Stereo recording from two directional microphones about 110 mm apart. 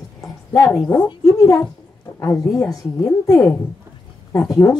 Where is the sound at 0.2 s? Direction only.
30° left (ahead or behind).